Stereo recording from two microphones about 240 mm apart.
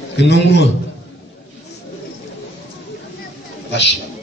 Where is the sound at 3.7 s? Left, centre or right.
Left.